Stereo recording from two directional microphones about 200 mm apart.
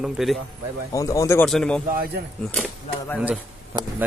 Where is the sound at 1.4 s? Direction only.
5° left (ahead or behind).